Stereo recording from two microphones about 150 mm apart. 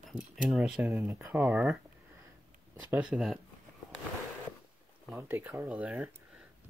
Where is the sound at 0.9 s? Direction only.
15° right (ahead or behind).